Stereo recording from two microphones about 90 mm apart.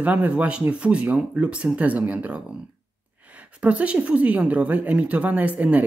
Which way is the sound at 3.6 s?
15° right (ahead or behind).